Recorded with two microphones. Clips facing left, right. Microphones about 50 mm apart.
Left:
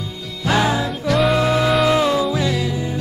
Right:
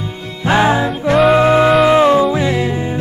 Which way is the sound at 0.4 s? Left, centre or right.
Right.